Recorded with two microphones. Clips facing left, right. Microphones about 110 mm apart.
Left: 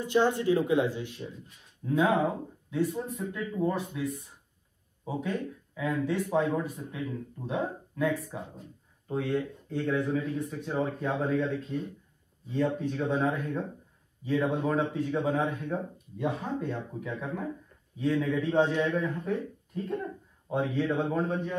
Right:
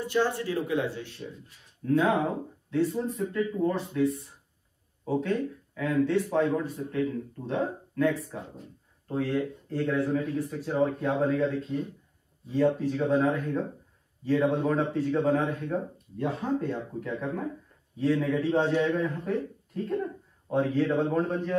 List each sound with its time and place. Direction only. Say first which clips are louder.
0.0 s speech: left 2 dB; 20° left (ahead or behind)
2.7 s speech: right 3 dB; centre (ahead or behind)
9.0 s speech: right 2 dB; centre (ahead or behind)